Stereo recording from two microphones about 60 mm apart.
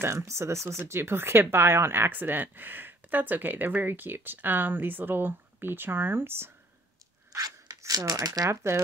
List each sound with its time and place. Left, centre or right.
0.0 s speech: right
7.3 s speech: right
8.7 s speech: right